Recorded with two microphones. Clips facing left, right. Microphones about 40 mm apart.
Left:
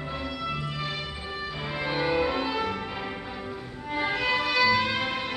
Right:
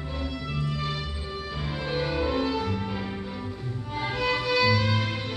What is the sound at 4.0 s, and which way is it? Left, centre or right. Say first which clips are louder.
Music: left 1 dB; centre.